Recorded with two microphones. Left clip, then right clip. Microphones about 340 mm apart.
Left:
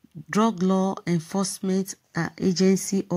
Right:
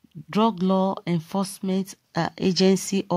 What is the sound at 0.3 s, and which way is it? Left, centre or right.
Speech, centre.